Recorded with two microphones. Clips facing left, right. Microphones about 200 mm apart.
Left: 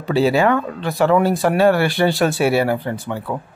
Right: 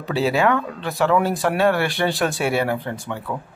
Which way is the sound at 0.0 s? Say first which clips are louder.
Left 4 dB; centre (ahead or behind).